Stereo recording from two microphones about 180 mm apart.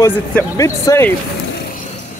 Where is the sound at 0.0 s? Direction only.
15° left (ahead or behind).